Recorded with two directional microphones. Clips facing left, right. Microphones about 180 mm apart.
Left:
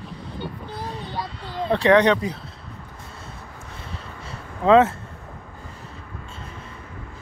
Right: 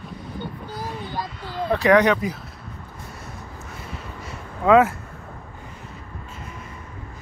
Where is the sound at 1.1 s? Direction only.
25° left (ahead or behind).